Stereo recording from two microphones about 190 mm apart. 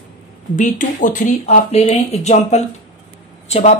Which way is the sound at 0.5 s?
45° left (ahead or behind).